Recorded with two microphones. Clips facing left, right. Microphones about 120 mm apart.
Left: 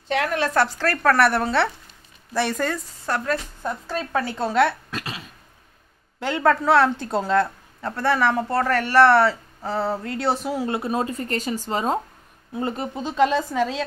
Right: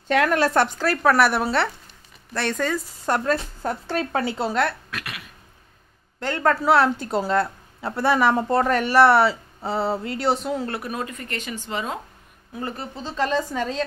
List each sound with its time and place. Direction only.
0.1 s a woman's voice: 50° right (ahead or behind)
0.4 s a woman's voice: 25° right (ahead or behind); by 2.8 s 5° left (ahead or behind)
3.1 s a woman's voice: 20° right (ahead or behind)
4.3 s a woman's voice: 10° right (ahead or behind)
4.9 s a sound: 30° left (ahead or behind)
6.1 s speech: 10° left (ahead or behind)
6.5 s a woman's voice: 5° right (ahead or behind)
9.6 s a sound: 25° right (ahead or behind)
10.0 s speech: centre (ahead or behind)
10.7 s speech: 25° left (ahead or behind)
12.5 s speech: 20° left (ahead or behind); by 13.8 s 5° left (ahead or behind)